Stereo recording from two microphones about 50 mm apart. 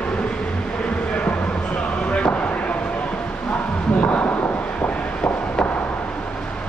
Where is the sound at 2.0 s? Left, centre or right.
Left.